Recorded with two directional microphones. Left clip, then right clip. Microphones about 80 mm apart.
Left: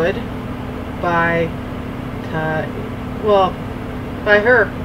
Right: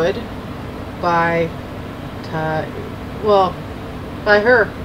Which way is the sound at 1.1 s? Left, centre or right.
Centre.